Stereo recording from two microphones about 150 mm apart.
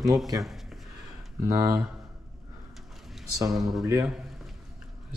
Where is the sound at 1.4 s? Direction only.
20° right (ahead or behind).